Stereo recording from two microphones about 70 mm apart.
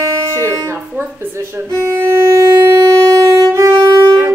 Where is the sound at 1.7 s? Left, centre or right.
Right.